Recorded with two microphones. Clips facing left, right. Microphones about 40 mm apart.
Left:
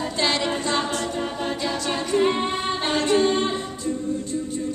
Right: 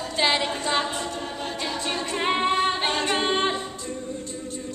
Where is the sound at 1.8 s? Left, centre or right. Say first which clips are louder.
Left 5 dB; right.